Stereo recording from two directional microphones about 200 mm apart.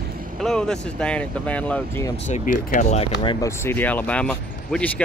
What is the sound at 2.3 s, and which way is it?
Speech, 35° left (ahead or behind).